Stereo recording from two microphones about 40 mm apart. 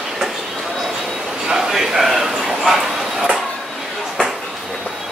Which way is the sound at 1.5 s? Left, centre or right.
Centre.